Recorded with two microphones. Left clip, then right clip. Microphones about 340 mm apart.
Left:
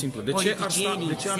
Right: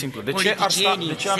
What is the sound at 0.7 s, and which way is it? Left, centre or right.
Speech, centre.